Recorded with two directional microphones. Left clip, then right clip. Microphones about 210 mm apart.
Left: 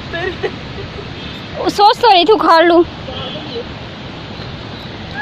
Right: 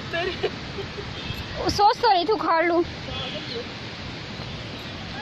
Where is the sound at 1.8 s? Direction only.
10° left (ahead or behind).